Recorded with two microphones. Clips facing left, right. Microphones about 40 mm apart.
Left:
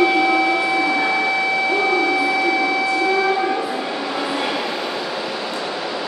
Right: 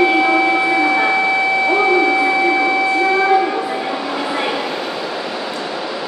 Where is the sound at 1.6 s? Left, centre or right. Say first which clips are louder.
Right 5 dB; right.